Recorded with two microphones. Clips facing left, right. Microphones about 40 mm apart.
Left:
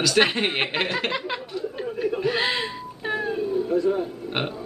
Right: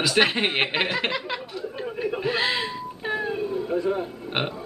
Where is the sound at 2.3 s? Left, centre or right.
Centre.